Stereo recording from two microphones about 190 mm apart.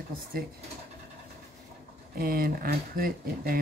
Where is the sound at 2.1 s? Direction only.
50° right (ahead or behind).